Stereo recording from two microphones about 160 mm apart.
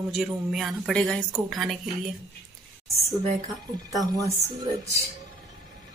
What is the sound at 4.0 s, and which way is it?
A woman's voice, 20° right (ahead or behind).